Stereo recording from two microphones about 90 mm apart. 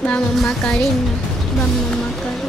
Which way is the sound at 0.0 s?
10° left (ahead or behind).